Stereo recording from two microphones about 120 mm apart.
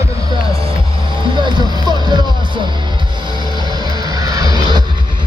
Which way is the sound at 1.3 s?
40° right (ahead or behind).